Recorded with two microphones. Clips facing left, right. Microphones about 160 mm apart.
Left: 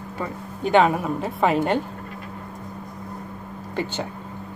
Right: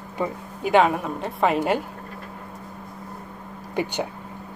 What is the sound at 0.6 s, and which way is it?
A woman's voice, centre (ahead or behind).